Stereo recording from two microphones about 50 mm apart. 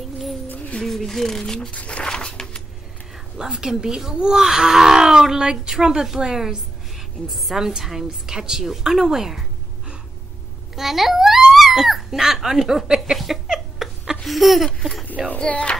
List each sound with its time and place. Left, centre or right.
0.8 s speech: centre
1.7 s speech: left
2.0 s a sound: centre
3.3 s speech: centre
10.8 s a child's voice: centre
13.2 s a sound: centre
14.8 s speech: centre
15.3 s speech: left